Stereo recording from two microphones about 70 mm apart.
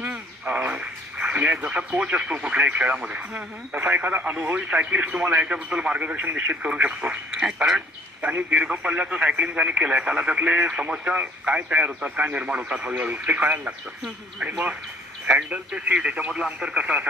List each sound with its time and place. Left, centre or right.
0.0 s speech: right
8.2 s speech: right